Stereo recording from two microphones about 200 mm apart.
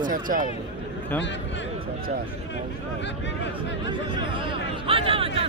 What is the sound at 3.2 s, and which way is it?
Speech, 65° left (ahead or behind).